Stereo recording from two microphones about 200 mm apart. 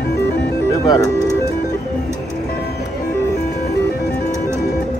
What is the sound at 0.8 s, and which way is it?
Speech, 20° left (ahead or behind).